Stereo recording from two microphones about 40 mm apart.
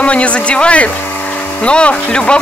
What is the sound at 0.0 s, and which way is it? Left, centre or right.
Speech, left.